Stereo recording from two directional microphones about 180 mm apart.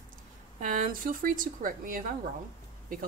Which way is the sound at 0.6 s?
50° right (ahead or behind).